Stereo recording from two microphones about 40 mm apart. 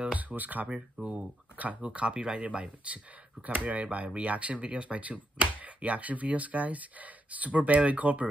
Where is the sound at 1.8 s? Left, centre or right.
Right.